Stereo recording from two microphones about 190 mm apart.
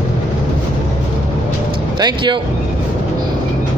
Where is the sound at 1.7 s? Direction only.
25° right (ahead or behind).